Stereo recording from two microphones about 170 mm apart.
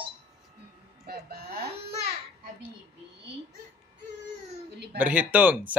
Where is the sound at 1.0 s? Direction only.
65° right (ahead or behind).